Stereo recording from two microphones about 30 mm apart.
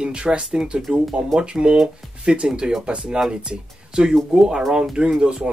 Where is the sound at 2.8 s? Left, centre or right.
Right.